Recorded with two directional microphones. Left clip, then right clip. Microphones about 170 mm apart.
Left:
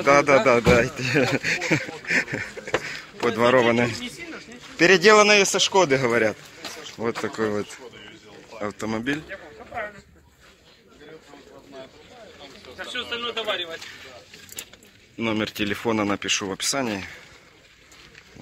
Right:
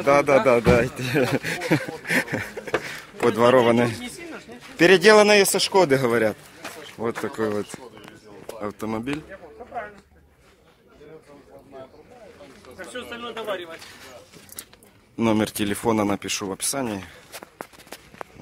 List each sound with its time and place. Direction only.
0.0 s a man's voice: 5° right (ahead or behind)
2.0 s a sound: 25° right (ahead or behind)
3.5 s speech: 20° right (ahead or behind)
7.0 s a man's voice: 5° right (ahead or behind)
12.7 s speech: 45° right (ahead or behind)
15.1 s speech: 35° right (ahead or behind); by 17.1 s 10° right (ahead or behind)